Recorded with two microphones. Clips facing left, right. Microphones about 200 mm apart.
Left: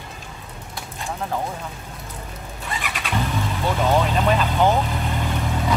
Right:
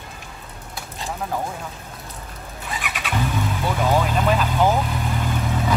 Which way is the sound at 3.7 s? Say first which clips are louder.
Left 1 dB; centre (ahead or behind).